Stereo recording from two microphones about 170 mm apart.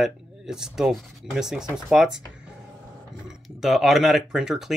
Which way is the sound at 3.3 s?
Centre (ahead or behind).